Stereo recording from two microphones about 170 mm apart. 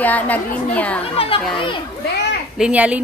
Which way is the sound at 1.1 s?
35° left (ahead or behind).